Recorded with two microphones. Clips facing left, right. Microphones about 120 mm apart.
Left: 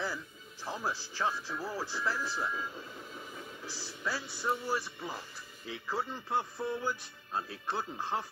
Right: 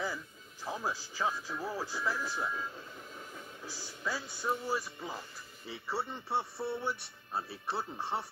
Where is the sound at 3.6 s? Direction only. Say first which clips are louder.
Left 1 dB; 90° left.